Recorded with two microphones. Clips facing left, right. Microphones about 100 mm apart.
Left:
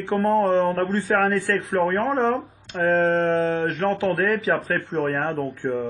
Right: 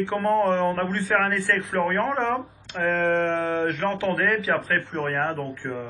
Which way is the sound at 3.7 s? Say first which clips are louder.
Left 3 dB; 35° left (ahead or behind).